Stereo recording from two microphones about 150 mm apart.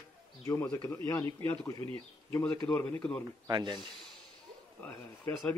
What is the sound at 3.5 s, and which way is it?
Speech, 30° right (ahead or behind).